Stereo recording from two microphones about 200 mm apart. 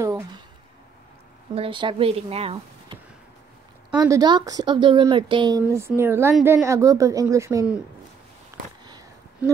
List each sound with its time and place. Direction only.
1.5 s speech: 25° right (ahead or behind)
4.0 s speech: 20° right (ahead or behind)